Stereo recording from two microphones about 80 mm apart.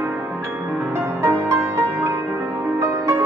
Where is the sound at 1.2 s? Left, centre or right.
Right.